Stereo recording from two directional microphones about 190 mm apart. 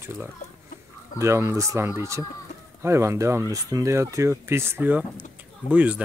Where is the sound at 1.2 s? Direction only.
15° right (ahead or behind).